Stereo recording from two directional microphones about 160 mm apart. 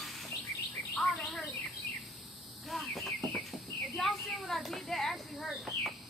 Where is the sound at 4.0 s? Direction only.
Centre (ahead or behind).